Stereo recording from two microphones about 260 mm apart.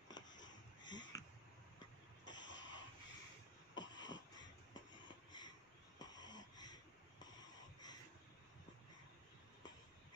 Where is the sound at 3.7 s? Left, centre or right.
Left.